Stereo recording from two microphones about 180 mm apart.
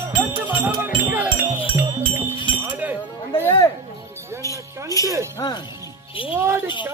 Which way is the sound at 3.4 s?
15° left (ahead or behind).